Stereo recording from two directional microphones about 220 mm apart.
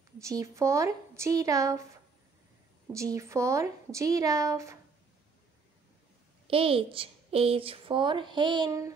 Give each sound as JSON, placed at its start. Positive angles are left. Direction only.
{"t": 0.2, "sound": "a woman's voice", "side_deg": -15}
{"t": 2.9, "sound": "a woman's voice", "side_deg": -15}
{"t": 6.4, "sound": "a woman's voice", "side_deg": -25}